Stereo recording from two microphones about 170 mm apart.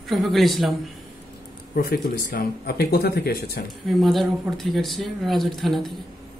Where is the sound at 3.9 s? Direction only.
Centre (ahead or behind).